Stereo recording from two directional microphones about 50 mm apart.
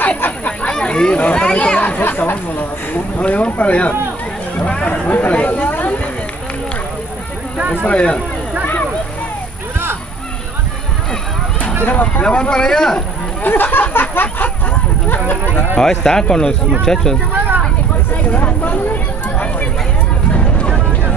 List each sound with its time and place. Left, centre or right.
0.5 s a sound: left
1.2 s speech: left
1.8 s chatter: left
3.2 s speech: left
7.8 s speech: left
11.8 s speech: left; by 13.0 s centre
13.4 s speech: left
15.8 s speech: centre
18.1 s a sound: left